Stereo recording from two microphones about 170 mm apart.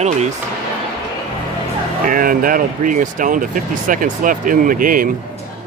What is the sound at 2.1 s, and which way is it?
Speech, 55° right (ahead or behind).